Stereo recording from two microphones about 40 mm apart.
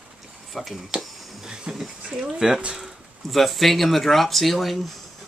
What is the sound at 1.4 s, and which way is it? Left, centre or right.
Train, centre.